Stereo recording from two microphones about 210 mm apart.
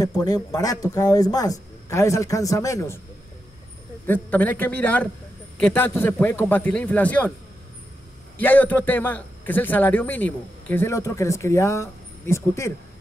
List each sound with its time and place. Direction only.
0.0 s a man's voice: 20° left (ahead or behind)
4.0 s a man's voice: 10° left (ahead or behind)
8.4 s a man's voice: 10° left (ahead or behind)